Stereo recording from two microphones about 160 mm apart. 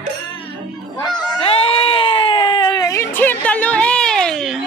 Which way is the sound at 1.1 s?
25° left (ahead or behind).